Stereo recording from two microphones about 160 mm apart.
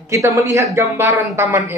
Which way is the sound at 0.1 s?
20° right (ahead or behind).